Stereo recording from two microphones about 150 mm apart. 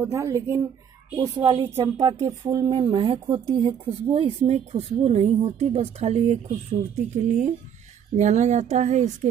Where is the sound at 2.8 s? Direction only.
35° right (ahead or behind).